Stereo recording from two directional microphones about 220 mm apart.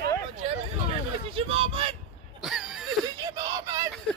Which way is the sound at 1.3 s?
25° right (ahead or behind).